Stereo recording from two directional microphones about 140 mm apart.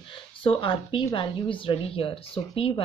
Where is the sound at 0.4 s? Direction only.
40° left (ahead or behind).